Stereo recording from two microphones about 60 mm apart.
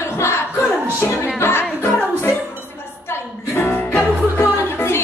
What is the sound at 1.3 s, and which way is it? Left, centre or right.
Music, left.